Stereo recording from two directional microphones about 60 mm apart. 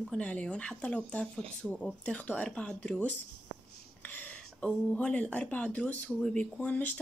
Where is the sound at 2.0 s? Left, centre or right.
Left.